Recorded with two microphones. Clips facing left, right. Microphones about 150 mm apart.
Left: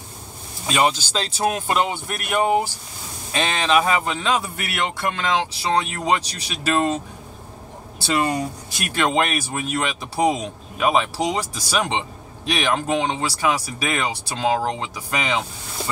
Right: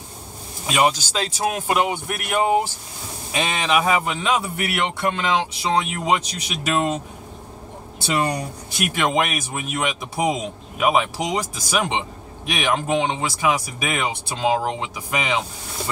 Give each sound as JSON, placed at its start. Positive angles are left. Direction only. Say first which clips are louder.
{"t": 0.7, "sound": "speech", "louder": "right 1 dB", "side_deg": -10}
{"t": 4.4, "sound": "speech", "louder": "right 2 dB", "side_deg": -20}
{"t": 8.6, "sound": "speech", "louder": "right 3 dB", "side_deg": -15}